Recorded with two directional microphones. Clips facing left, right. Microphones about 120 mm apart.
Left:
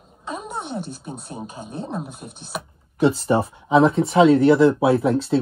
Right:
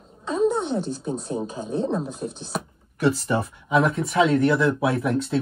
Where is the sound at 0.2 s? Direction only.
15° left (ahead or behind).